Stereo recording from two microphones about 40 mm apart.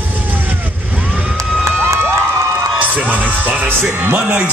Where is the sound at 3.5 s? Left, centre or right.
Right.